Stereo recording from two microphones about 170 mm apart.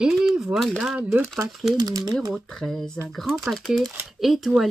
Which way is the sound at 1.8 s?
25° right (ahead or behind).